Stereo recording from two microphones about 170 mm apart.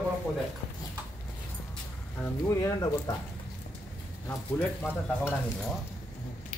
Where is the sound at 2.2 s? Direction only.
15° left (ahead or behind).